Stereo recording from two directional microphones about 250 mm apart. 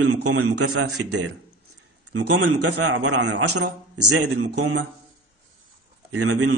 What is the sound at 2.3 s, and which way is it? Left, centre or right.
A man's voice, right.